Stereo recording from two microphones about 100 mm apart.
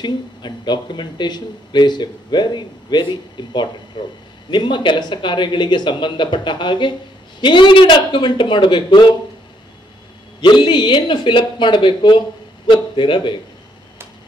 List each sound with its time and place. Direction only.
0.0 s speech: 50° left (ahead or behind)
10.4 s speech: 50° left (ahead or behind)